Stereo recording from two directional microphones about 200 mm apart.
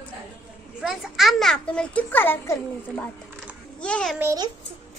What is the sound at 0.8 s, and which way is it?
A child's voice, centre (ahead or behind).